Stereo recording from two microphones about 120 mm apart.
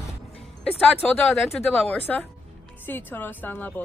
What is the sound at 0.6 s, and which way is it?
Speech, 10° left (ahead or behind).